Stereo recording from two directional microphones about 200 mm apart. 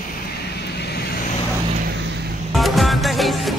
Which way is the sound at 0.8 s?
55° left (ahead or behind).